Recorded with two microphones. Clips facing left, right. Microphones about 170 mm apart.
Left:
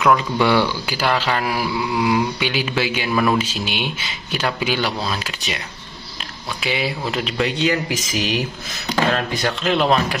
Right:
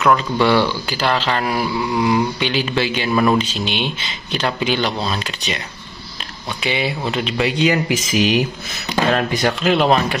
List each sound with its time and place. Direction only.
0.0 s speech: 10° left (ahead or behind)
6.6 s speech: centre (ahead or behind); by 9.5 s 20° right (ahead or behind)
9.6 s speech: 5° right (ahead or behind)